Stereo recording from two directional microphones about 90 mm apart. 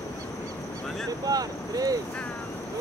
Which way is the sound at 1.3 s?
45° right (ahead or behind).